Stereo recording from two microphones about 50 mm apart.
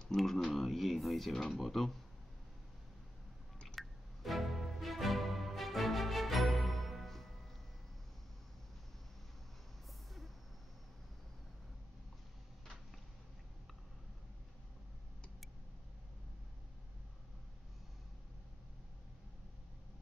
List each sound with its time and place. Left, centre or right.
0.2 s speech: centre
3.6 s music: centre